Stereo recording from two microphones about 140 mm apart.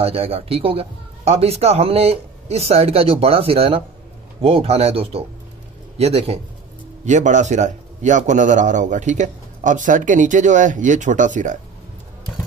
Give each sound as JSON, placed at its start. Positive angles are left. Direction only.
{"t": 0.0, "sound": "a man's voice", "side_deg": -45}
{"t": 7.1, "sound": "a man's voice", "side_deg": -60}